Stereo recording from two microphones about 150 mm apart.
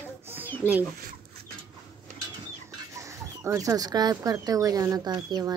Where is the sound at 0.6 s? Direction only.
15° left (ahead or behind).